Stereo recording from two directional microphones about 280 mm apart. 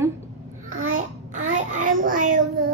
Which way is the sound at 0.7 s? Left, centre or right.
Right.